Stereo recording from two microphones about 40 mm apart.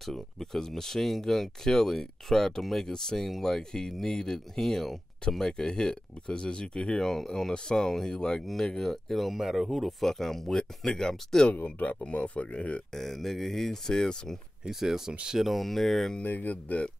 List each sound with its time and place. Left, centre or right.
0.0 s speech: centre
5.4 s speech: centre
11.6 s speech: left
12.9 s speech: centre
14.7 s speech: centre
16.3 s speech: left